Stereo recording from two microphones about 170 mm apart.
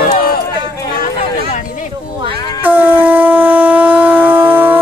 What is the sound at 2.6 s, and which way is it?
Shofar, 10° right (ahead or behind).